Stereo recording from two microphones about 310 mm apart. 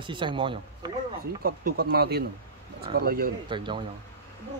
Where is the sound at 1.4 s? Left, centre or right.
Right.